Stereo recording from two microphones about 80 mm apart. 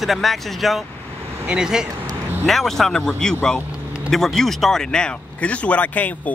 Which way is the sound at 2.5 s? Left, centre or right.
Centre.